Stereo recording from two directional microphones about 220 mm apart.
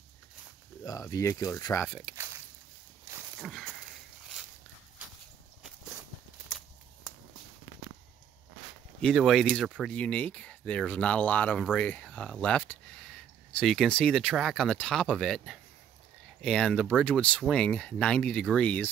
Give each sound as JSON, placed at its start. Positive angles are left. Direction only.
{"t": 0.8, "sound": "speech", "side_deg": 15}
{"t": 1.9, "sound": "a sound", "side_deg": -5}
{"t": 3.3, "sound": "walk", "side_deg": 0}
{"t": 9.0, "sound": "speech", "side_deg": 0}